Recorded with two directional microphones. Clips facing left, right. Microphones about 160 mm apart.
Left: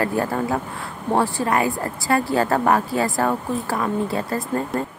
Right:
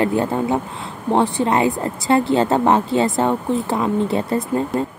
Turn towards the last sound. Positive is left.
turn(degrees=-20)  # may be behind; listen again after turning